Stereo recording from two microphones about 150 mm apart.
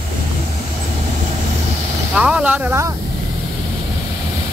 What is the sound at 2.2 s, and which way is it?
Speech, 5° right (ahead or behind).